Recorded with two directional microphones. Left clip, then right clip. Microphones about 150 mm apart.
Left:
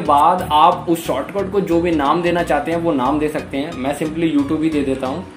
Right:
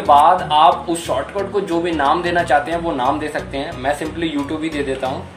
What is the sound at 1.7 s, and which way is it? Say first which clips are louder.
Speech: even; 45° left (ahead or behind).